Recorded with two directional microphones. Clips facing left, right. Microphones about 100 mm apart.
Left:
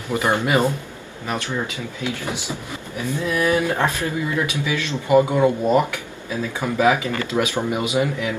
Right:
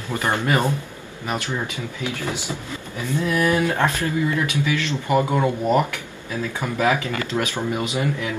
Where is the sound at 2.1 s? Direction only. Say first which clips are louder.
Left 1 dB; 20° left (ahead or behind).